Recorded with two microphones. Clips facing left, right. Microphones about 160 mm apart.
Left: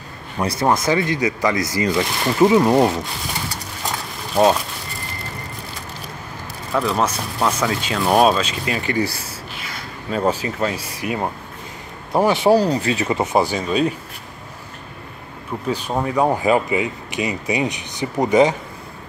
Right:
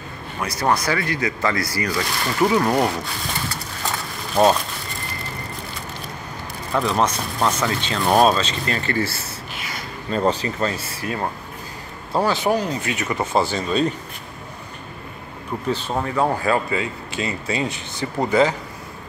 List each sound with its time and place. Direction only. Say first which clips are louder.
0.4 s speech: left 3 dB; 25° left (ahead or behind)
4.4 s speech: left 1 dB; centre (ahead or behind)
6.7 s speech: even; centre (ahead or behind); by 12.4 s 20° left (ahead or behind)
12.4 s speech: left 6 dB; 35° left (ahead or behind); by 13.9 s 10° left (ahead or behind)
15.7 s speech: left 2 dB; 10° left (ahead or behind)